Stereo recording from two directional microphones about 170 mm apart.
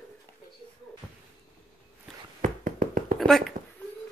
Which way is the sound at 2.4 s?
50° right (ahead or behind).